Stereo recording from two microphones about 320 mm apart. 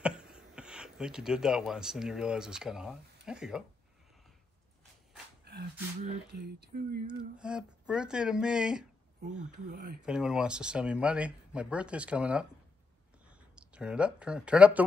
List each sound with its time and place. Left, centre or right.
0.0 s speech: centre
5.4 s speech: right
7.3 s speech: centre
9.7 s speech: right
10.0 s speech: centre